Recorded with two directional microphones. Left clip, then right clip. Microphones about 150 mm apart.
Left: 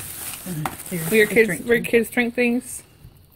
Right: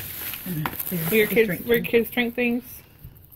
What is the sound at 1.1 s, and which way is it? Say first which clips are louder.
Speech: left 3 dB; 25° left (ahead or behind).